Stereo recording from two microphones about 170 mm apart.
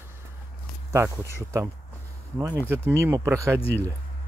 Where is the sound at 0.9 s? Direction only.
15° right (ahead or behind).